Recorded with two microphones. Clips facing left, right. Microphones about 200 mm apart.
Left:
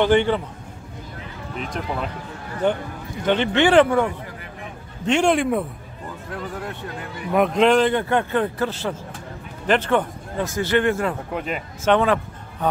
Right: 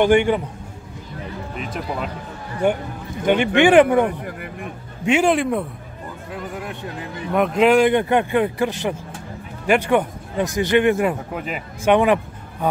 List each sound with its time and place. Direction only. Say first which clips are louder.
0.0 s speech: right 2 dB; 15° right (ahead or behind)
1.6 s a man's voice: even; 5° right (ahead or behind)
5.0 s a man's voice: right 1 dB; 5° right (ahead or behind)
7.3 s speech: right 1 dB; centre (ahead or behind)
11.3 s speech: left 1 dB; 5° right (ahead or behind)